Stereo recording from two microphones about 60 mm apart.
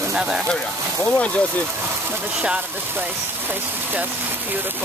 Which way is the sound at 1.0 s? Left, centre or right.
Left.